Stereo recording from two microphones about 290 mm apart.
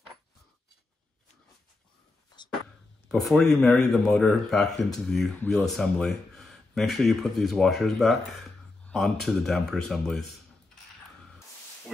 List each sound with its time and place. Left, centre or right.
3.1 s speech: centre